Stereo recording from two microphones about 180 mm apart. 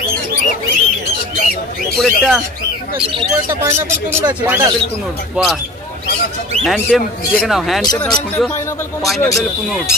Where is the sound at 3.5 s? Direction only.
15° right (ahead or behind).